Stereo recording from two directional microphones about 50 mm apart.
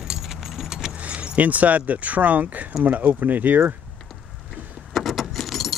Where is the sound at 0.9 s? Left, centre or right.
Right.